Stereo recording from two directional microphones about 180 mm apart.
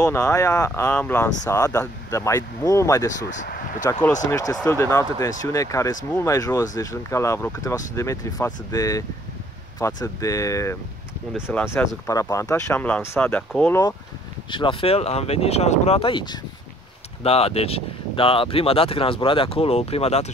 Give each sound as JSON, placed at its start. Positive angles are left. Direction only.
{"t": 0.0, "sound": "speech", "side_deg": 15}
{"t": 3.3, "sound": "speech", "side_deg": 45}
{"t": 4.3, "sound": "speech", "side_deg": 20}
{"t": 14.5, "sound": "speech", "side_deg": 30}